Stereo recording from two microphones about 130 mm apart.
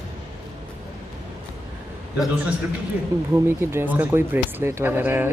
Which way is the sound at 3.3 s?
20° right (ahead or behind).